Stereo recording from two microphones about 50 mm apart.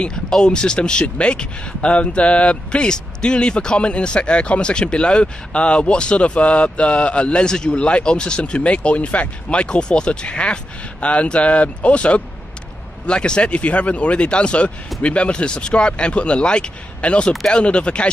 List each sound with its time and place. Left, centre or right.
0.4 s speech: centre
17.3 s speech: centre
17.6 s speech: left